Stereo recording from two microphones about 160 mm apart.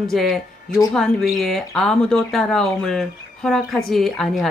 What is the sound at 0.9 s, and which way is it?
Speech, centre (ahead or behind).